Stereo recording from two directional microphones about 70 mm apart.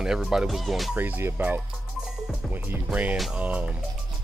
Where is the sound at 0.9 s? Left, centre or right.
Right.